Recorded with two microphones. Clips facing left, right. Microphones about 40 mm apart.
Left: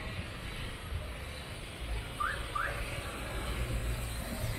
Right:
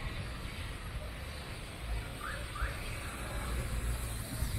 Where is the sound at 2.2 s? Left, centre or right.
Left.